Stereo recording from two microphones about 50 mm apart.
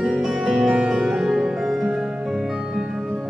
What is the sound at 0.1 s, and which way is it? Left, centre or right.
Music, centre.